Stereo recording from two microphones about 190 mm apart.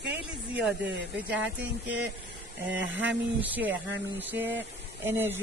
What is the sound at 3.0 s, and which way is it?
Speech, 10° right (ahead or behind).